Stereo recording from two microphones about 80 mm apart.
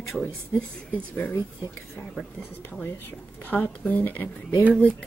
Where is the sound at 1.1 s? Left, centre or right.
Left.